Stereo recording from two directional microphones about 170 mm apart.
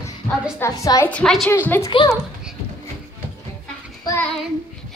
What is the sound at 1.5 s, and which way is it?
Speech, 15° left (ahead or behind).